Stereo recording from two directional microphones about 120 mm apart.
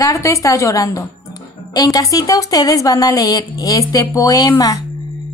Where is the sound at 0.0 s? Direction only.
25° left (ahead or behind).